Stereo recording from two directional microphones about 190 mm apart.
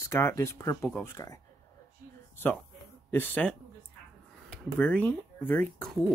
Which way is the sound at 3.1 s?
10° left (ahead or behind).